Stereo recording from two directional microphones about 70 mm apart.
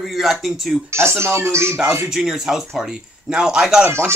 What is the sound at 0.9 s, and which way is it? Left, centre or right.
Speech, right.